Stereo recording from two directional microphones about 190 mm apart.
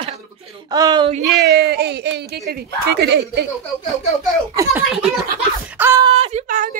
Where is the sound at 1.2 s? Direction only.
60° right (ahead or behind).